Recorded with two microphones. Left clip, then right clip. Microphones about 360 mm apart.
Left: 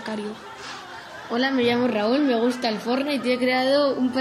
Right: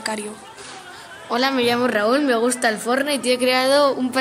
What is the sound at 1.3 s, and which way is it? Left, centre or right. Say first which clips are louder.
Speech: right 3 dB; right.